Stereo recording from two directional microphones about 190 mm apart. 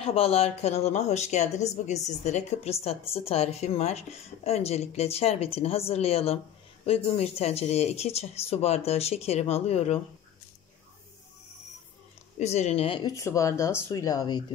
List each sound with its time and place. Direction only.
0.0 s speech: 30° left (ahead or behind)
12.4 s speech: 35° left (ahead or behind)
13.1 s speech: 15° left (ahead or behind)